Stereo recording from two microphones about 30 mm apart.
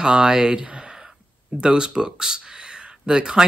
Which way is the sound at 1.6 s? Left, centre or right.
Right.